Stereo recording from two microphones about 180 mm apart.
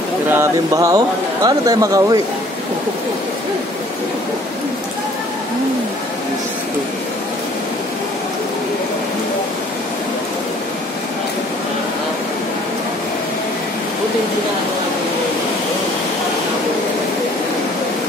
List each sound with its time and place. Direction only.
0.3 s speech: 15° right (ahead or behind)